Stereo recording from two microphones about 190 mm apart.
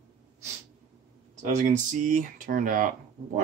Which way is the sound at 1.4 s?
40° right (ahead or behind).